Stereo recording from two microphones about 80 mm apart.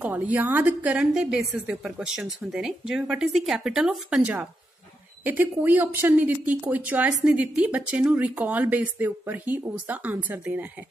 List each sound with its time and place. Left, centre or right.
0.0 s speech: centre
0.8 s a woman's voice: centre
5.2 s speech: right